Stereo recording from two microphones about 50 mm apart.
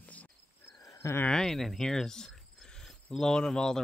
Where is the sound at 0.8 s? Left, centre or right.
Left.